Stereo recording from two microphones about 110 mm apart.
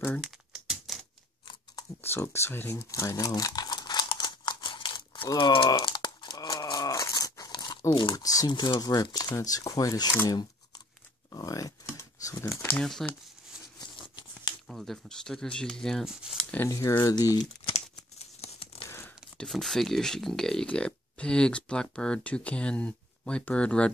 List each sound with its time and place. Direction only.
0.2 s typing: 5° right (ahead or behind)
2.0 s crumpling: 20° left (ahead or behind); by 7.8 s 40° left (ahead or behind)
7.9 s speech: 50° left (ahead or behind)
8.2 s speech: 35° left (ahead or behind)
10.2 s tearing: 40° left (ahead or behind)
11.3 s a sound: 30° left (ahead or behind)
12.7 s speech: 5° left (ahead or behind)
13.7 s scissors: 45° left (ahead or behind)
14.7 s speech: 5° left (ahead or behind)
16.5 s speech: 25° left (ahead or behind)
17.6 s a sound: 70° left (ahead or behind)
18.9 s tearing: 20° left (ahead or behind)
19.3 s speech: 5° left (ahead or behind)